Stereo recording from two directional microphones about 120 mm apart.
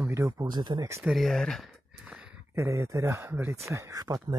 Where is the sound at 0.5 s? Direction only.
40° right (ahead or behind).